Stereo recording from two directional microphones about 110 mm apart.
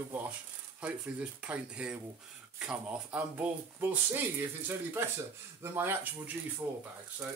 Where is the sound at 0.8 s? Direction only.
10° right (ahead or behind).